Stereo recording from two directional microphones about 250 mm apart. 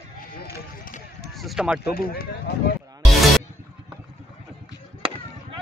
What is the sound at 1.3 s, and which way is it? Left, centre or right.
Speech, centre.